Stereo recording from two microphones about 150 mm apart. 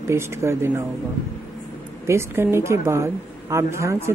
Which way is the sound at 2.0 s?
15° right (ahead or behind).